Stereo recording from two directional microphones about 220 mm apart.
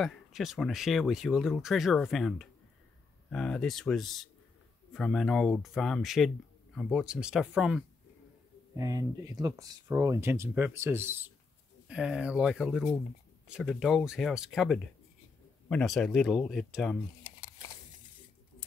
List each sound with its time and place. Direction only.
0.0 s speech: centre (ahead or behind)
8.7 s speech: 15° right (ahead or behind); by 17.0 s centre (ahead or behind)